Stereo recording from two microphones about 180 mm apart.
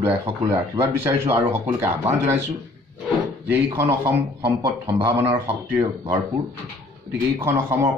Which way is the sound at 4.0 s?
15° right (ahead or behind).